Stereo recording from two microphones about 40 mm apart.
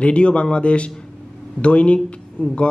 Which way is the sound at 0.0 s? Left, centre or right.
Left.